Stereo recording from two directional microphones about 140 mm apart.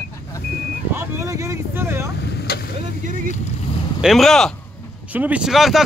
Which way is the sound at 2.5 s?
90° left.